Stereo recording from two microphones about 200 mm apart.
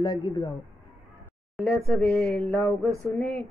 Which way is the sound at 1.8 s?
5° left (ahead or behind).